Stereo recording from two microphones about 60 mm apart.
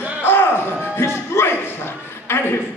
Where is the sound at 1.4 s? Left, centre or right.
Left.